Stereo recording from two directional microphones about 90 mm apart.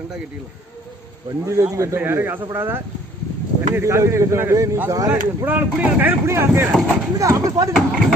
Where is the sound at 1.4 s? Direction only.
35° right (ahead or behind).